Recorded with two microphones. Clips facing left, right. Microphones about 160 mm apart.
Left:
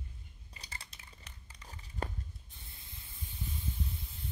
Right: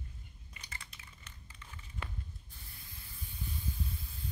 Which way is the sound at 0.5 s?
35° left (ahead or behind).